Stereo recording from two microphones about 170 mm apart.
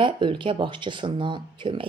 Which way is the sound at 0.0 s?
30° right (ahead or behind).